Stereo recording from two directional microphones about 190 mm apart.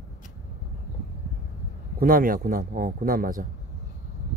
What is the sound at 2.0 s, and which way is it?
A man's voice, 50° right (ahead or behind).